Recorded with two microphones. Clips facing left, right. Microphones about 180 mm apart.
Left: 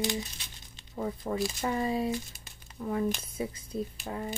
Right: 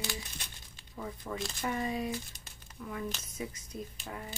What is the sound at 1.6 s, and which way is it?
Speech, 30° left (ahead or behind).